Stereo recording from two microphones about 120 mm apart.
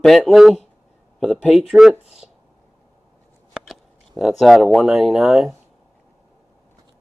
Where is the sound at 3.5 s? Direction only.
5° right (ahead or behind).